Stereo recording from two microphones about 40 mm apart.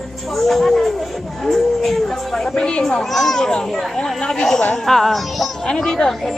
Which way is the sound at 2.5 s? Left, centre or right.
Left.